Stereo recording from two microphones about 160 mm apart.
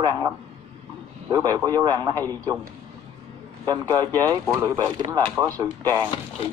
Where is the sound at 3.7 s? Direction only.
25° right (ahead or behind).